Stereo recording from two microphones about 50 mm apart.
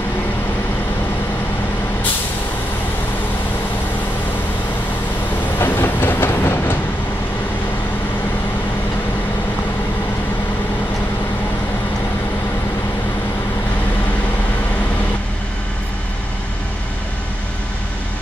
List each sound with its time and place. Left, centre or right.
5.6 s train: left